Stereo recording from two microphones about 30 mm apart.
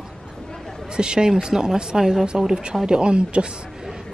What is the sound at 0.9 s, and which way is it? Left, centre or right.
Speech, right.